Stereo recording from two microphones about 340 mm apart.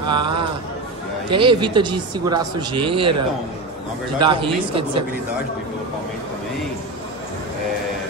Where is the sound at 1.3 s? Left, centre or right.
Centre.